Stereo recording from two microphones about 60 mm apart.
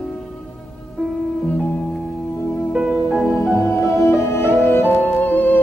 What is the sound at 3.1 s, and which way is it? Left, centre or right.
Music, centre.